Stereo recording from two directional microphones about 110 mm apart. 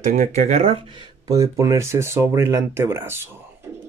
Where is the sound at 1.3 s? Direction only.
30° right (ahead or behind).